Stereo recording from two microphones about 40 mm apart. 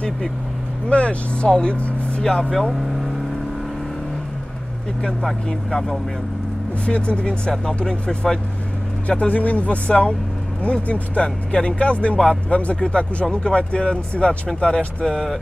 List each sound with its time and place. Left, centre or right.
0.8 s speech: left
5.2 s speech: centre
6.9 s speech: left
7.5 s speech: centre